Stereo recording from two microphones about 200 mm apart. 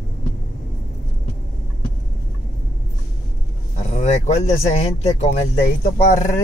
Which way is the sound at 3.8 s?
35° left (ahead or behind).